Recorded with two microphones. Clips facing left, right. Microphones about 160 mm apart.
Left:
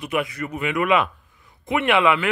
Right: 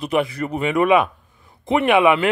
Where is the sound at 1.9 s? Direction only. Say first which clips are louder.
Right 3 dB; 20° right (ahead or behind).